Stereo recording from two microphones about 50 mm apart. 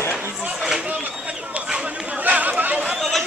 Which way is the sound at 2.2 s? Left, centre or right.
Right.